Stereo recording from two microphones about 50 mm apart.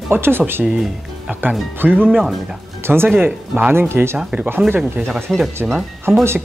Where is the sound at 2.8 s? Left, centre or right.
Right.